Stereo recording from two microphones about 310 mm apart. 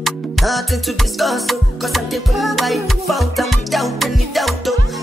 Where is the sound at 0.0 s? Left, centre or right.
Centre.